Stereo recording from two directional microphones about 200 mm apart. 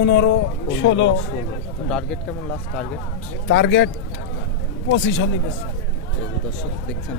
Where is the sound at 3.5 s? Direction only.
60° left (ahead or behind).